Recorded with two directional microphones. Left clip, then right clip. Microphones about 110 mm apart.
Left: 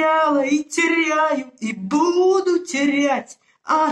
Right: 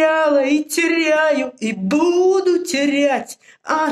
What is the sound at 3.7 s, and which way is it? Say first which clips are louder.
Speech: left 1 dB; 30° right (ahead or behind).